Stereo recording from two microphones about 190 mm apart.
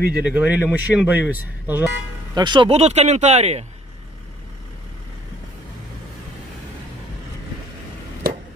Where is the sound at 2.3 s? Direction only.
25° right (ahead or behind).